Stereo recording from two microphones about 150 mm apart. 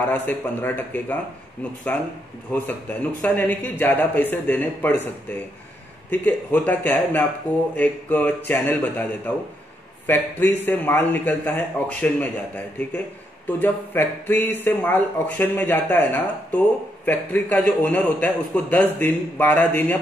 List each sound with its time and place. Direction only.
0.1 s speech: 10° left (ahead or behind)